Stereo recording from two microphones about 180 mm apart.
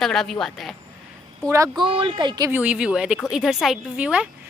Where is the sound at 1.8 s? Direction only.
30° right (ahead or behind).